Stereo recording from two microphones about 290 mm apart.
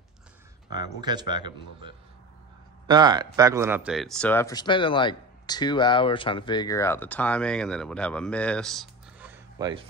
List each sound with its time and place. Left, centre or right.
0.7 s a man's voice: centre